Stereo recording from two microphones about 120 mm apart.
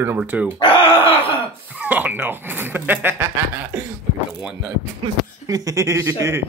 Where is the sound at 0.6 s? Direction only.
45° left (ahead or behind).